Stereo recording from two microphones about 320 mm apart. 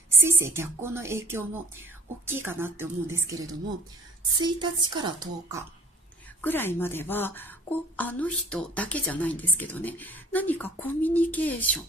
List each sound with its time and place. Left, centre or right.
0.1 s speech: centre
6.4 s a woman's voice: centre